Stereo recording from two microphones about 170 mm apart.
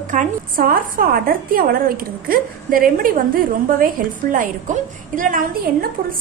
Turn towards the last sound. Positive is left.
turn(degrees=-50)  # may be behind; listen again after turning